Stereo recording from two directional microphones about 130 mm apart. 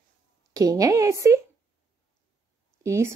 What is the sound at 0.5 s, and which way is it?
Speech, 25° right (ahead or behind).